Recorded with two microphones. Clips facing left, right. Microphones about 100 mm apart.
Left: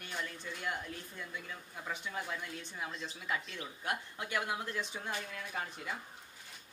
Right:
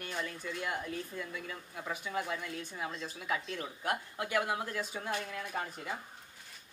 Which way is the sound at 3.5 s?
45° right (ahead or behind).